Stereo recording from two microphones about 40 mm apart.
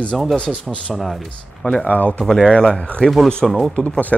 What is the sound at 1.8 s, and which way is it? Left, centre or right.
Speech, left.